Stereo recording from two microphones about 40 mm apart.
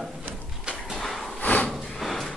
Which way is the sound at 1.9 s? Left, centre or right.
Centre.